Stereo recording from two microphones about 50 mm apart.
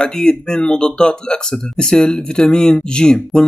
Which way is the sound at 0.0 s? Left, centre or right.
Centre.